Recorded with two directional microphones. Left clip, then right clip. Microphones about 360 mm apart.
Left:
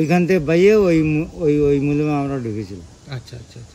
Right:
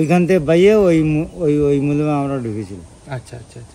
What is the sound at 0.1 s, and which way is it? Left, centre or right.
Speech, centre.